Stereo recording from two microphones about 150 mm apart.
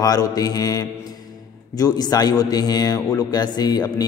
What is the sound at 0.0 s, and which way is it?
A man's voice, 25° left (ahead or behind).